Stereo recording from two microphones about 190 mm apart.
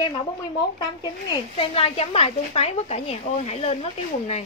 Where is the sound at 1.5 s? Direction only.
30° left (ahead or behind).